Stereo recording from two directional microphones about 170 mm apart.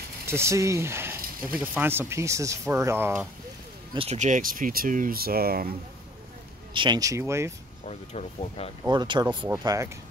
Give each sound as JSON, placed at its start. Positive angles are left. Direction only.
{"t": 0.3, "sound": "speech", "side_deg": -15}
{"t": 3.9, "sound": "speech", "side_deg": -35}
{"t": 6.7, "sound": "speech", "side_deg": -25}
{"t": 7.8, "sound": "speech", "side_deg": 40}
{"t": 8.8, "sound": "speech", "side_deg": -25}